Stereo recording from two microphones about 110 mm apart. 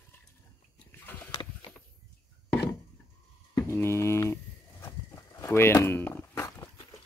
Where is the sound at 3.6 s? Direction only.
25° left (ahead or behind).